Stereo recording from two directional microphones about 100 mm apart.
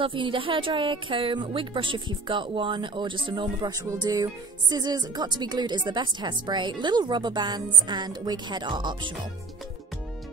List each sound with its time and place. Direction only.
0.0 s a woman's voice: 60° right (ahead or behind)
3.7 s speech: 40° right (ahead or behind)